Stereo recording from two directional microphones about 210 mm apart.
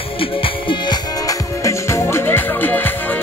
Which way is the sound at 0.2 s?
25° left (ahead or behind).